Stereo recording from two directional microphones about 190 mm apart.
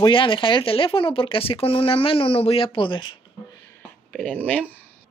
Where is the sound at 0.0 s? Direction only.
25° left (ahead or behind).